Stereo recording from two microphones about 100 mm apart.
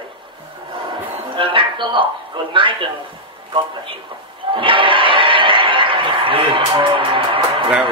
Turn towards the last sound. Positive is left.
turn(degrees=-55)  # may be behind; listen again after turning